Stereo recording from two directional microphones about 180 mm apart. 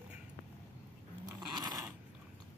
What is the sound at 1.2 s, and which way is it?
Dog, 25° right (ahead or behind).